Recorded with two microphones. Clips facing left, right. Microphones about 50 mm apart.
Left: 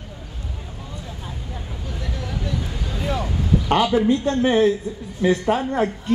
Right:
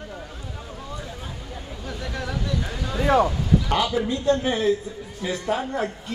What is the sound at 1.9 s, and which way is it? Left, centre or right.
Vehicle, right.